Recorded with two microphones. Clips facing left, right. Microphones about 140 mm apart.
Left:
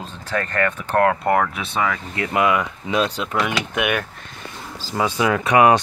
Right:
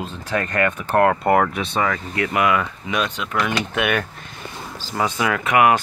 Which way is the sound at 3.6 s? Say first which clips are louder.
Right 1 dB; 10° left (ahead or behind).